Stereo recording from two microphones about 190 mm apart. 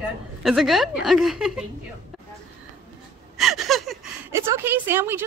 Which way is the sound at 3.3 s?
Centre (ahead or behind).